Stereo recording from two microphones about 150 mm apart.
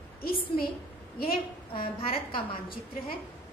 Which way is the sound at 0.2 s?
80° left.